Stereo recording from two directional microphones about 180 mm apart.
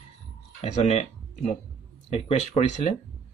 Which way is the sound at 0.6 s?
40° left (ahead or behind).